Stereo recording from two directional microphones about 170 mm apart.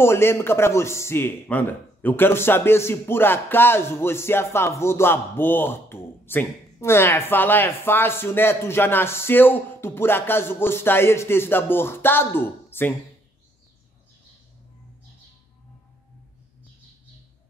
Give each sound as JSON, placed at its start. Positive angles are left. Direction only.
{"t": 0.0, "sound": "speech", "side_deg": 15}